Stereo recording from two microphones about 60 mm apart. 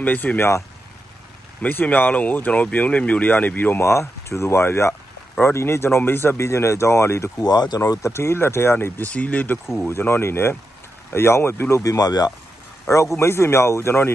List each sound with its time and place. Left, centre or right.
0.0 s speech: left
1.6 s speech: left
3.8 s speech: left
7.7 s speech: left
8.1 s speech: left
9.1 s speech: left
9.8 s speech: left
11.8 s speech: left
12.9 s speech: left